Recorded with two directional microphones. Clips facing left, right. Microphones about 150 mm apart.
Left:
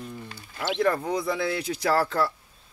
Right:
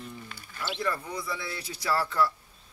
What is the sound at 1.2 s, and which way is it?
Speech, 65° left (ahead or behind).